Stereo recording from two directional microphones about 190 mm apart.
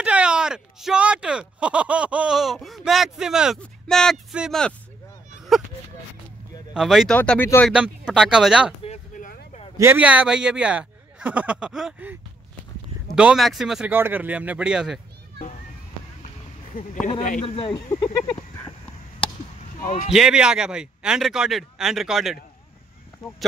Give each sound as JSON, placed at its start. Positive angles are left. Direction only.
{"t": 0.0, "sound": "a sound", "side_deg": -5}
{"t": 6.7, "sound": "speech", "side_deg": 0}
{"t": 7.2, "sound": "speech", "side_deg": 10}
{"t": 7.7, "sound": "speech", "side_deg": -5}
{"t": 8.8, "sound": "a sound", "side_deg": 35}
{"t": 9.8, "sound": "speech", "side_deg": -10}
{"t": 16.7, "sound": "speech", "side_deg": 45}
{"t": 19.8, "sound": "a man's voice", "side_deg": 45}
{"t": 20.1, "sound": "speech", "side_deg": -5}